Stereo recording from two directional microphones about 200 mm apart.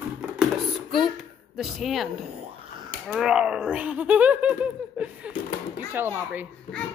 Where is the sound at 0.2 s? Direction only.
Centre (ahead or behind).